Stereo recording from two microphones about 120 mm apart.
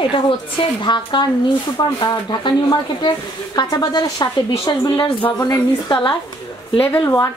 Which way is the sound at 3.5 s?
35° left (ahead or behind).